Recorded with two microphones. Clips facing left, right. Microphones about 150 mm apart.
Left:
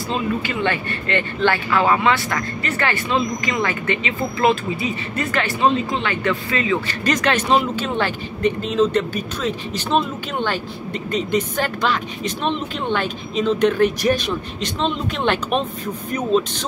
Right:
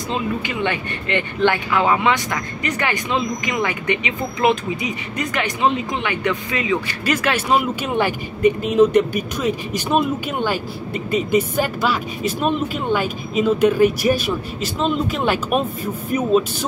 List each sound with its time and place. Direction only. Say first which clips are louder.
0.1 s speech: left 1 dB; 15° right (ahead or behind)